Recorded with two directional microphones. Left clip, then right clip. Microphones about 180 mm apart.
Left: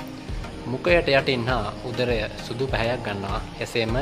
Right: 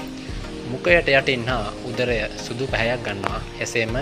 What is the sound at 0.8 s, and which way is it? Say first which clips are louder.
Speech: right 3 dB; 10° right (ahead or behind).